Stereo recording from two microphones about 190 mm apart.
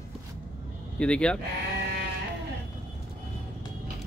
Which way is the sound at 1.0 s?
5° left (ahead or behind).